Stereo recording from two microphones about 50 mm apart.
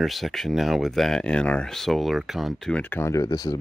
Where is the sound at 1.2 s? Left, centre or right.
Centre.